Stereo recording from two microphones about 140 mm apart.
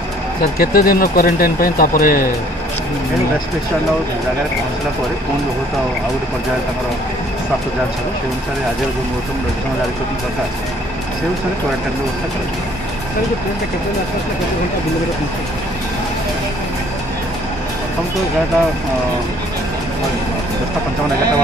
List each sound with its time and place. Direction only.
0.6 s speech: 90° left